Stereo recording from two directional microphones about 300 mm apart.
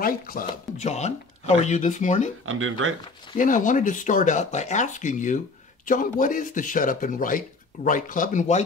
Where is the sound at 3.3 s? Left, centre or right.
Left.